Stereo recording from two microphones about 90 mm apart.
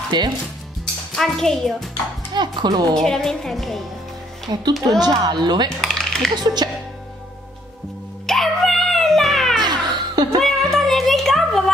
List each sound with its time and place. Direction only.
0.1 s speech: 55° right (ahead or behind)
1.1 s a woman's voice: 5° left (ahead or behind)
2.3 s speech: 55° right (ahead or behind)
2.9 s a woman's voice: 5° left (ahead or behind)
4.5 s speech: 50° right (ahead or behind)
5.8 s a sound: 5° left (ahead or behind)
6.3 s speech: 50° right (ahead or behind)
8.3 s music: centre (ahead or behind)
9.6 s music: 55° right (ahead or behind)
10.4 s music: 5° left (ahead or behind)